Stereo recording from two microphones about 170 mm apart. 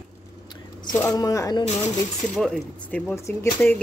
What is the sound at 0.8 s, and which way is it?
Speech, 25° left (ahead or behind).